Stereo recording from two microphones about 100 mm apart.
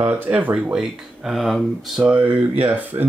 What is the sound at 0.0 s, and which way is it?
Speech, 15° right (ahead or behind).